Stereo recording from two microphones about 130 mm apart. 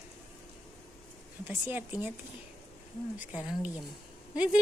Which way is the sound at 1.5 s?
15° right (ahead or behind).